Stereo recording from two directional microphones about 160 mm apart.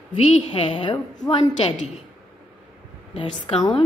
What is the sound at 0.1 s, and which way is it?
A woman's voice, 35° left (ahead or behind).